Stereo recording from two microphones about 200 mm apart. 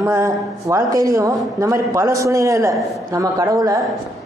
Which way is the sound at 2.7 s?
Centre (ahead or behind).